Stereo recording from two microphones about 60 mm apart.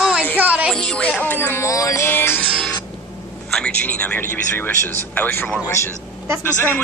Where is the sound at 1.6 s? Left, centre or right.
Left.